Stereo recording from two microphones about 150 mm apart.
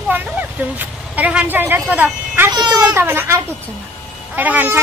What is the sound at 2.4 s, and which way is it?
Speech, 25° right (ahead or behind).